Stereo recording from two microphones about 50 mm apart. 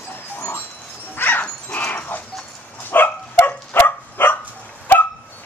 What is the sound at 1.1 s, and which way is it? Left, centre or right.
Dog, left.